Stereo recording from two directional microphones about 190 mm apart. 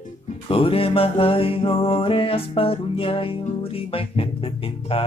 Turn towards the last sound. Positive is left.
turn(degrees=30)  # may be behind; listen again after turning